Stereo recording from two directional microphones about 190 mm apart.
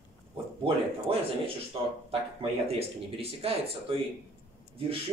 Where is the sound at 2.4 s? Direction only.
30° right (ahead or behind).